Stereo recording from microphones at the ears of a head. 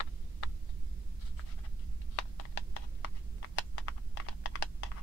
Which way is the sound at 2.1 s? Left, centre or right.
Left.